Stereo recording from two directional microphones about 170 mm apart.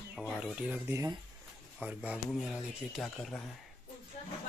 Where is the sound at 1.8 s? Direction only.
10° right (ahead or behind).